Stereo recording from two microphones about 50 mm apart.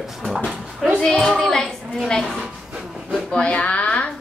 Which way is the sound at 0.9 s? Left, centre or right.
Centre.